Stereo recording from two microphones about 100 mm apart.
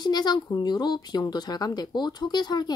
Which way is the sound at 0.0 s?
45° left (ahead or behind).